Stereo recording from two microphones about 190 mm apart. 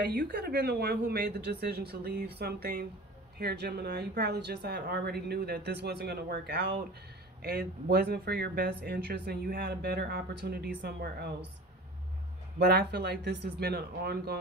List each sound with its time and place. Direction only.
0.0 s speech: 55° right (ahead or behind)
12.5 s speech: 55° right (ahead or behind)